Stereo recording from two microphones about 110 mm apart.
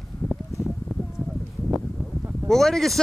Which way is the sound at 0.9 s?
Centre (ahead or behind).